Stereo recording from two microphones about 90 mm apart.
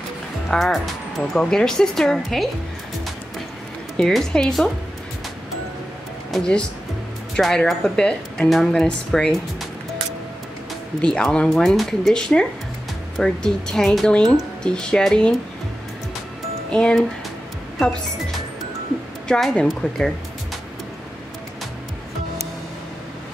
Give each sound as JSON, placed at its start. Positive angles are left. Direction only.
{"t": 0.5, "sound": "speech", "side_deg": 0}
{"t": 3.9, "sound": "speech", "side_deg": 5}
{"t": 6.3, "sound": "speech", "side_deg": 5}
{"t": 11.0, "sound": "speech", "side_deg": 10}
{"t": 16.7, "sound": "speech", "side_deg": 10}
{"t": 19.2, "sound": "speech", "side_deg": 5}